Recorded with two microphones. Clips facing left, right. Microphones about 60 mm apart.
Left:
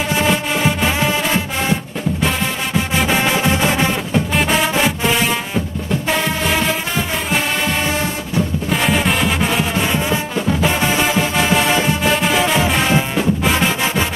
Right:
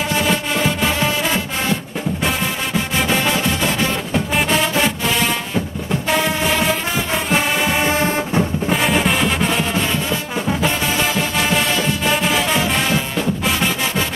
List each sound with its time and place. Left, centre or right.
0.1 s music: centre
4.1 s music: centre
8.8 s music: centre